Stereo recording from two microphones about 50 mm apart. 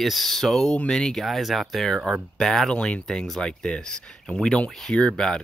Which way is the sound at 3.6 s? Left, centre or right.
Centre.